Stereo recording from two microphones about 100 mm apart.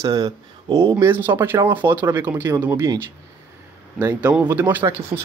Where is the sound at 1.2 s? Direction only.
25° right (ahead or behind).